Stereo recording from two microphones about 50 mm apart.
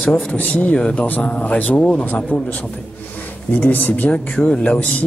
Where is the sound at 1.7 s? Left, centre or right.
Left.